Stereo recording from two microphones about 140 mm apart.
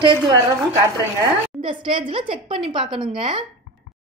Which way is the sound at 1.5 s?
40° right (ahead or behind).